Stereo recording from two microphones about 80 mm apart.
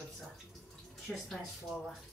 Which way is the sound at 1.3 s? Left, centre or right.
Centre.